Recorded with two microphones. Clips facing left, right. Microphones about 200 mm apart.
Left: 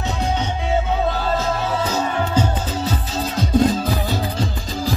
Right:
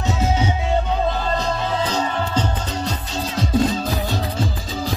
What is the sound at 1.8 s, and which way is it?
Music, 5° left (ahead or behind).